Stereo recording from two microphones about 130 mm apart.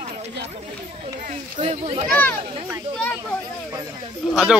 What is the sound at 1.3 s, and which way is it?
Speech, 55° right (ahead or behind).